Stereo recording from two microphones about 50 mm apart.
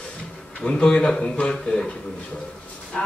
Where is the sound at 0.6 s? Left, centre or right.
Centre.